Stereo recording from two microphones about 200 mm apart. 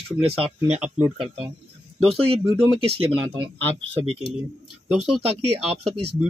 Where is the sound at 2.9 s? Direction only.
30° right (ahead or behind).